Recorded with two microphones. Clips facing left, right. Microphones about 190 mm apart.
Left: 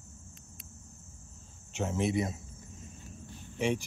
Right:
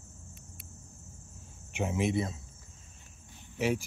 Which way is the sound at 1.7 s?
15° right (ahead or behind).